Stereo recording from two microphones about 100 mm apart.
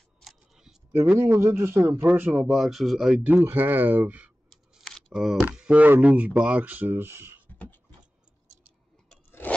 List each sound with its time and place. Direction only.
0.2 s scissors: 5° right (ahead or behind)
0.9 s speech: 25° right (ahead or behind)
2.4 s speech: centre (ahead or behind)
3.4 s speech: 20° right (ahead or behind)
4.5 s speech: centre (ahead or behind); by 7.3 s 25° right (ahead or behind)